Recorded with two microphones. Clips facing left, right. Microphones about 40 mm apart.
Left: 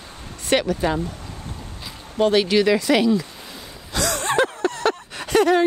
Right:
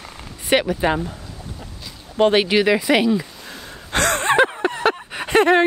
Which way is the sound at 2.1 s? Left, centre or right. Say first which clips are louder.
Right 2 dB; right.